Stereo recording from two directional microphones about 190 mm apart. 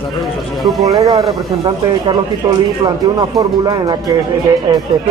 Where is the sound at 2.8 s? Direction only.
20° right (ahead or behind).